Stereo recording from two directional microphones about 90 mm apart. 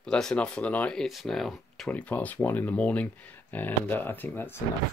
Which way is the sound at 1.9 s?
15° left (ahead or behind).